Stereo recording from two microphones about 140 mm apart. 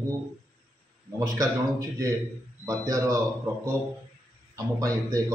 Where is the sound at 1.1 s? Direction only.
25° right (ahead or behind).